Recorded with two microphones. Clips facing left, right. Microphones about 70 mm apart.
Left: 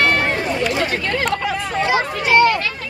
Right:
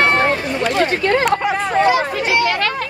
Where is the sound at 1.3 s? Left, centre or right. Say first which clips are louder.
Right 4 dB; right.